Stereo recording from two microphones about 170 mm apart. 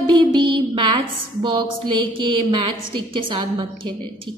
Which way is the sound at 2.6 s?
30° right (ahead or behind).